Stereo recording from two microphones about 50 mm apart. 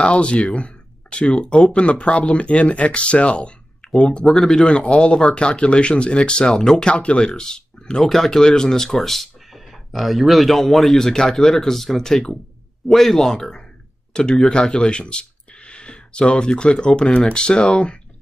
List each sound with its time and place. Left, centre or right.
0.0 s speech: left
4.3 s speech: centre
4.7 s speech: centre
6.5 s speech: centre
6.8 s speech: left